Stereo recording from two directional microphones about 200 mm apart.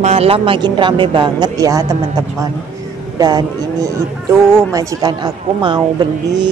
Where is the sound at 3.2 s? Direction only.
20° right (ahead or behind).